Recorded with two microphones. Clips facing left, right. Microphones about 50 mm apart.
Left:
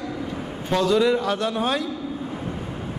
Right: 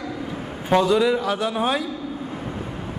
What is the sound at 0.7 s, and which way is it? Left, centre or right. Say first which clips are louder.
Speech: right 3 dB; centre.